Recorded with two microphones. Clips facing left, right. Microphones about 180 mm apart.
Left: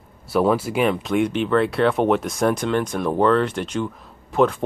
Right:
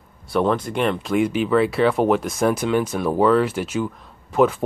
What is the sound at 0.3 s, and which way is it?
Speech, 5° left (ahead or behind).